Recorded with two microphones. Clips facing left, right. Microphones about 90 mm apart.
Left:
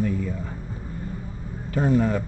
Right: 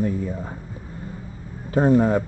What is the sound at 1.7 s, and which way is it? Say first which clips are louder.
Speech: right 4 dB; 30° right (ahead or behind).